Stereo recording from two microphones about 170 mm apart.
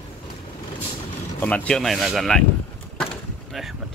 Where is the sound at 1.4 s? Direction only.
10° left (ahead or behind).